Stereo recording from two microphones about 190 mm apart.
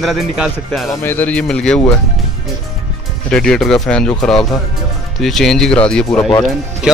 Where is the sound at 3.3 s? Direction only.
5° left (ahead or behind).